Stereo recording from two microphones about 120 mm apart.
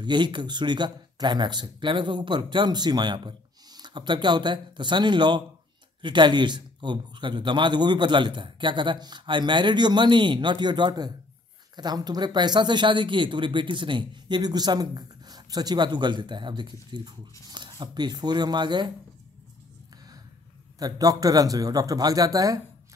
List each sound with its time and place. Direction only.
0.0 s speech: 40° right (ahead or behind)
20.8 s speech: 30° right (ahead or behind)